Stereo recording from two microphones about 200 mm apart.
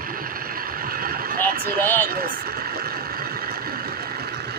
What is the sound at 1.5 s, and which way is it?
Speech, 50° right (ahead or behind).